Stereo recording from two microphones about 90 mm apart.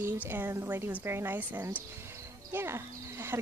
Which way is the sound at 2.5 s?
30° right (ahead or behind).